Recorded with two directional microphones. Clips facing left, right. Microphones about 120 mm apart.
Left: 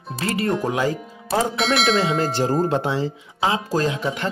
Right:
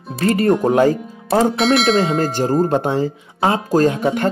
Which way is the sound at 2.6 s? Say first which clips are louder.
Right 4 dB; 45° right (ahead or behind).